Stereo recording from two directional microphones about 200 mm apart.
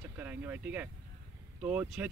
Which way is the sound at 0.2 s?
10° right (ahead or behind).